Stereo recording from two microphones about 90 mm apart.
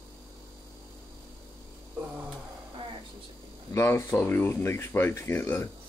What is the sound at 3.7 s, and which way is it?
Speech, 30° left (ahead or behind).